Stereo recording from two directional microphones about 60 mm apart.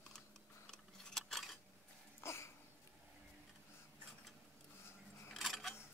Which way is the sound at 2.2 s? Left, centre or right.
Left.